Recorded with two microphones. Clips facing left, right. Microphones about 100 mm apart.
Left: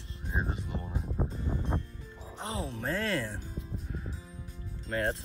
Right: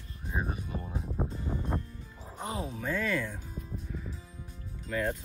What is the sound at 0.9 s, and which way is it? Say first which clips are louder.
Music: even; centre (ahead or behind).